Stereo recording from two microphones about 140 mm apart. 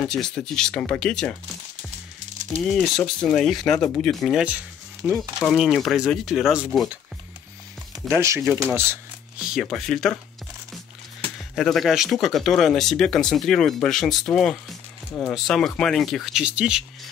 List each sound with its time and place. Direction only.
0.0 s speech: 5° left (ahead or behind)
2.7 s speech: 5° left (ahead or behind); by 5.3 s 15° right (ahead or behind)
5.4 s speech: centre (ahead or behind)
8.1 s speech: 20° right (ahead or behind)
9.4 s speech: centre (ahead or behind)
11.5 s speech: centre (ahead or behind)